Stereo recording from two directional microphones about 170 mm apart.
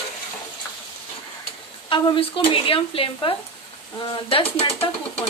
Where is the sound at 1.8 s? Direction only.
30° left (ahead or behind).